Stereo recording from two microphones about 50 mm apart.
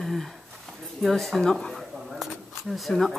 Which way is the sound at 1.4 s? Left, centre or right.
Centre.